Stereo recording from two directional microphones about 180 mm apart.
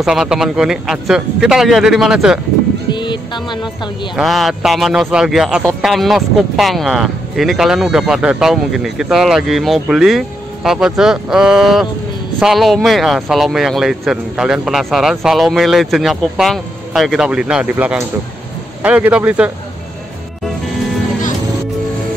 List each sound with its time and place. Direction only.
0.0 s speech: centre (ahead or behind)
2.9 s music: 25° left (ahead or behind)
4.1 s a man's voice: centre (ahead or behind)